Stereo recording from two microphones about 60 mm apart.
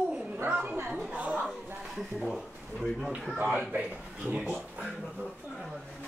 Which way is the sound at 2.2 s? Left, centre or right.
Centre.